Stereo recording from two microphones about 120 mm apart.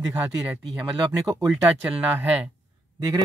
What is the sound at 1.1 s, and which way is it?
Speech, 30° right (ahead or behind).